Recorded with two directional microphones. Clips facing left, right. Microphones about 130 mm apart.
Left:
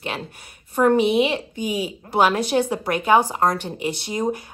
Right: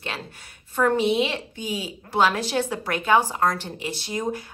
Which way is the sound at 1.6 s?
55° left (ahead or behind).